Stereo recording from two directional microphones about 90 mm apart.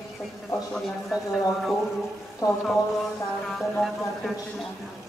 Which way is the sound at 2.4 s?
40° left (ahead or behind).